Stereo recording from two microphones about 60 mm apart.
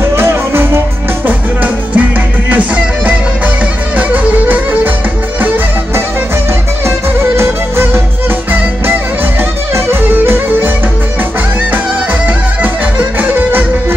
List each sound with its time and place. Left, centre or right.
0.0 s music: right
1.2 s music: right
7.3 s music: right
10.1 s music: right
13.2 s music: right